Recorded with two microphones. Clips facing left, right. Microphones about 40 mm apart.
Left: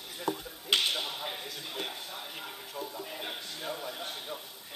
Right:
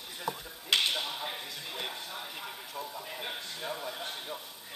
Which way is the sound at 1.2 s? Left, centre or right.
Centre.